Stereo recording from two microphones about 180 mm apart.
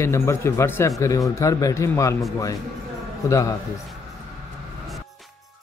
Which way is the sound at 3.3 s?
15° left (ahead or behind).